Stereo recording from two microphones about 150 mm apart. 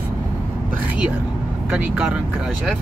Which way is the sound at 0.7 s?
10° right (ahead or behind).